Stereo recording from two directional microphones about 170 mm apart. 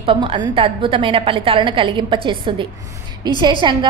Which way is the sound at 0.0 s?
30° right (ahead or behind).